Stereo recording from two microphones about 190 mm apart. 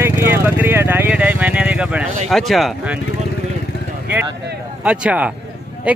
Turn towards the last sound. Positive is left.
turn(degrees=-5)  # may be behind; listen again after turning